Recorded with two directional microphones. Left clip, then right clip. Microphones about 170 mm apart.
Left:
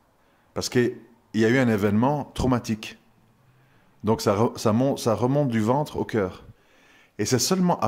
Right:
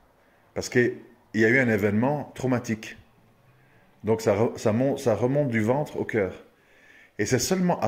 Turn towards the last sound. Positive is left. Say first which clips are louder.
# left 2 dB
turn(degrees=25)  # may be behind; listen again after turning